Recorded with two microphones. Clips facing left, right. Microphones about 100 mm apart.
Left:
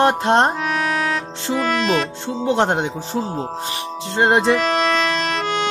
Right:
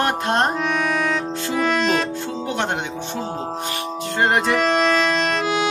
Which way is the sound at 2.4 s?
30° left (ahead or behind).